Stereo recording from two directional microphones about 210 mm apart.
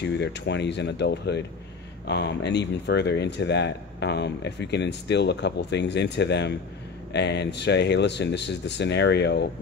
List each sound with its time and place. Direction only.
0.0 s speech: 55° left (ahead or behind)